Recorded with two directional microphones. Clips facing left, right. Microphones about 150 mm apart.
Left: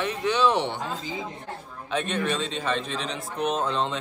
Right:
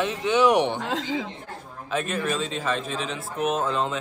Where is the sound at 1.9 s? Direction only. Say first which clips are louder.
Even; 5° right (ahead or behind).